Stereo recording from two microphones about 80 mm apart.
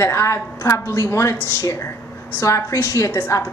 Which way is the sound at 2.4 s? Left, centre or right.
Left.